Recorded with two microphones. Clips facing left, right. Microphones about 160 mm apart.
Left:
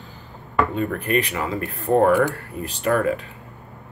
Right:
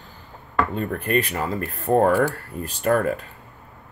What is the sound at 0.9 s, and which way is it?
Speech, 45° right (ahead or behind).